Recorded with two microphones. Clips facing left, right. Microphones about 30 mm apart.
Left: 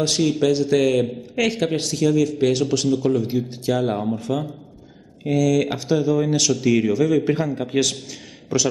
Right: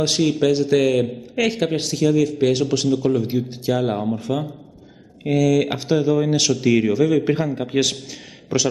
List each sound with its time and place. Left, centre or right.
0.0 s a man's voice: centre